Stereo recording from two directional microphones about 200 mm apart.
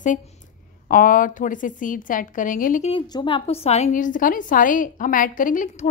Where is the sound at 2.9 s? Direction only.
25° left (ahead or behind).